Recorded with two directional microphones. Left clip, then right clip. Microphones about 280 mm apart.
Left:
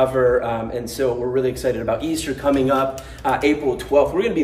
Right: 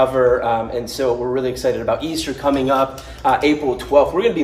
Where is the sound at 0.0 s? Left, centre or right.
Centre.